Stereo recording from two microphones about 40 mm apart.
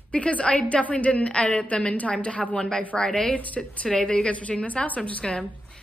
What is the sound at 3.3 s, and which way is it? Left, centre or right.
Speech, left.